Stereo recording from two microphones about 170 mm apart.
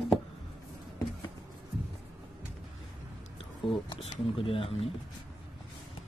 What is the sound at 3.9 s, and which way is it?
Speech, 35° left (ahead or behind).